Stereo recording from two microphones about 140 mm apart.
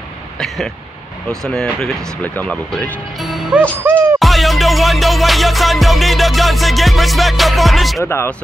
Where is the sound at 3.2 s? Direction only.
Centre (ahead or behind).